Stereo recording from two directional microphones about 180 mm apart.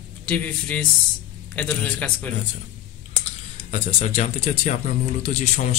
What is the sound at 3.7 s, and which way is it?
Speech, 40° left (ahead or behind).